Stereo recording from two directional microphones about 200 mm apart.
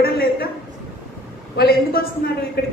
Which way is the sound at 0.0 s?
50° left (ahead or behind).